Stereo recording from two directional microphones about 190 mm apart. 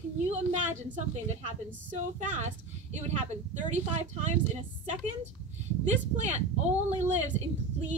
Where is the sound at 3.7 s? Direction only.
35° right (ahead or behind).